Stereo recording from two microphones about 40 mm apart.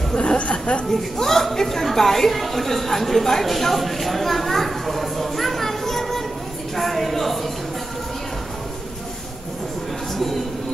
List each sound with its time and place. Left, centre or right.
0.4 s speech: left
0.8 s a woman's voice: centre
10.1 s a man's voice: centre